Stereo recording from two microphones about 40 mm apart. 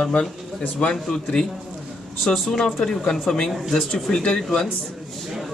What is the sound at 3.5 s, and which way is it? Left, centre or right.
Speech, centre.